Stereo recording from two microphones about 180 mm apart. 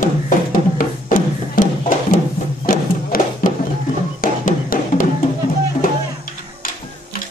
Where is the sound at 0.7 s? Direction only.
50° left (ahead or behind).